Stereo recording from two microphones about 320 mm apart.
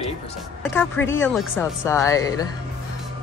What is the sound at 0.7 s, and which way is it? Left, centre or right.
Speech, centre.